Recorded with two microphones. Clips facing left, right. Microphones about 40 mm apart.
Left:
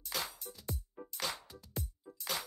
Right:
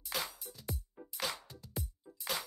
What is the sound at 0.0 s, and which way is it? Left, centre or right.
Music, centre.